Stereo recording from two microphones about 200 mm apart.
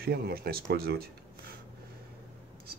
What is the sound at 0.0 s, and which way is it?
Speech, 50° right (ahead or behind).